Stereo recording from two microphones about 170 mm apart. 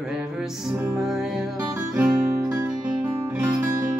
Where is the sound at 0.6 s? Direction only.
10° right (ahead or behind).